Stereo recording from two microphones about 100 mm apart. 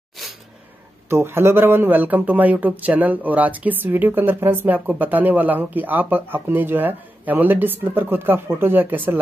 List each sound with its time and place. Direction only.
1.0 s speech: 25° right (ahead or behind)